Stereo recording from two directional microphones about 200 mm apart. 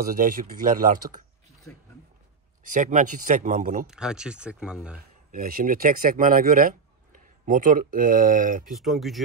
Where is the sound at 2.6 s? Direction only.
40° right (ahead or behind).